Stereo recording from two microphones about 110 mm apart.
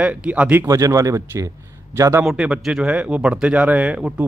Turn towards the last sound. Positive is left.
turn(degrees=-10)  # may be behind; listen again after turning